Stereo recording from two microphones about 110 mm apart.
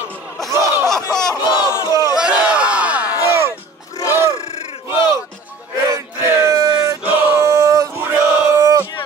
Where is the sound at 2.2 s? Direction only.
10° right (ahead or behind).